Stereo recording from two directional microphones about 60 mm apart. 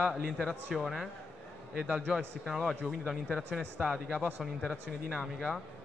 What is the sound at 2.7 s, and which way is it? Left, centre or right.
Speech, centre.